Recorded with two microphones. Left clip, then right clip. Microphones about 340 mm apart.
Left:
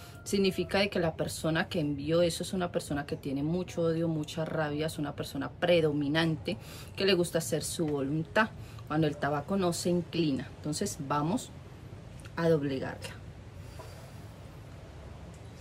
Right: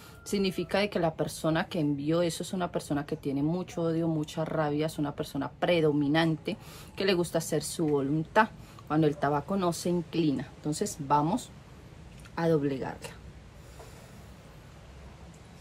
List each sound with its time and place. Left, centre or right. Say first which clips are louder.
0.3 s a woman's voice: left 1 dB; centre